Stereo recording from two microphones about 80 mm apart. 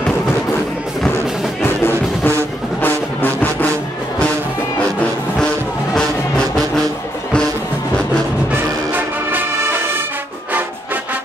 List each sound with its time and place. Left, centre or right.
1.6 s music: left
5.9 s music: centre
8.5 s music: right